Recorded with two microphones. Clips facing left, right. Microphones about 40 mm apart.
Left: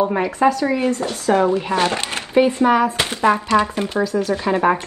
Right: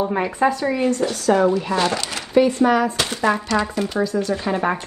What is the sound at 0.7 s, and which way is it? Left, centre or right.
Speech, left.